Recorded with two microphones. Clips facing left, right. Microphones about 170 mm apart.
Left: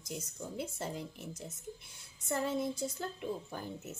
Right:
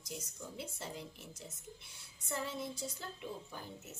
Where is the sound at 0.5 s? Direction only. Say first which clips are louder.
Left 6 dB; 50° left (ahead or behind).